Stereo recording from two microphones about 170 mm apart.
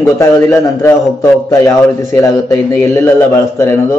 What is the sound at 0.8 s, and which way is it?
A man's voice, 15° left (ahead or behind).